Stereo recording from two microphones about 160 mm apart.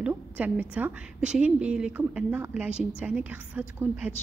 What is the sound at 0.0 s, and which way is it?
A woman's voice, 10° right (ahead or behind).